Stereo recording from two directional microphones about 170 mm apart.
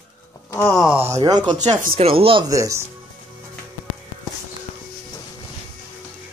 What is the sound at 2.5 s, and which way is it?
Speech, 15° right (ahead or behind).